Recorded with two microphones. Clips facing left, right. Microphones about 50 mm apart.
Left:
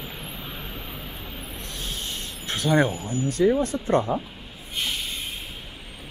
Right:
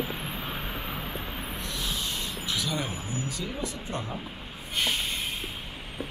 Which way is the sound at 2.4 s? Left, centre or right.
Left.